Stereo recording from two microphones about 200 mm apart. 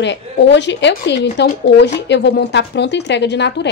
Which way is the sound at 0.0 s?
60° left (ahead or behind).